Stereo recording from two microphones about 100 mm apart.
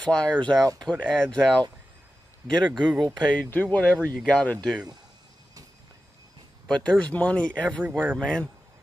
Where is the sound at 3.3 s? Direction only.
15° left (ahead or behind).